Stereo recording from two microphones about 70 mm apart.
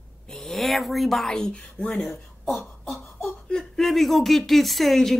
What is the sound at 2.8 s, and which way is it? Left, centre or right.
Beatboxing, centre.